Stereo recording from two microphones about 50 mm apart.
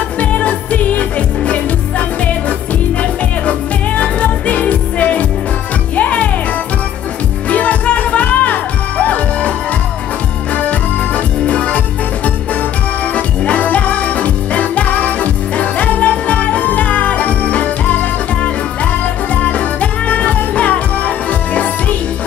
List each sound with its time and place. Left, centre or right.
0.2 s music: left
7.4 s music: left
10.5 s music: left
13.1 s music: left